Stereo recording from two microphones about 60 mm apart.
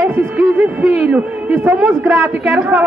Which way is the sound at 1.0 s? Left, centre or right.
Right.